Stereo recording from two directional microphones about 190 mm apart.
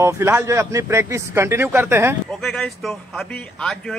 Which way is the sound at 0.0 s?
15° right (ahead or behind).